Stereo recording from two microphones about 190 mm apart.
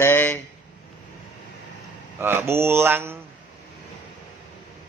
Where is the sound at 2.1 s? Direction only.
15° right (ahead or behind).